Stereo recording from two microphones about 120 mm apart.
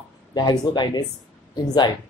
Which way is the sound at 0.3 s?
35° left (ahead or behind).